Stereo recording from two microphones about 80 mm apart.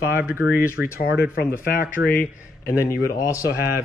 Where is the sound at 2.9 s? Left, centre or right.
Left.